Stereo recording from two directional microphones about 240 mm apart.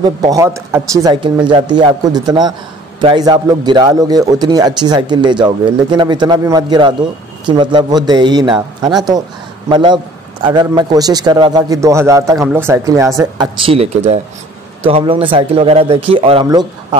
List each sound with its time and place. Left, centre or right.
0.0 s a man's voice: centre